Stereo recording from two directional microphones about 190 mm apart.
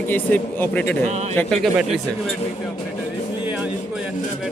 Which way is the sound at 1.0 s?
35° right (ahead or behind).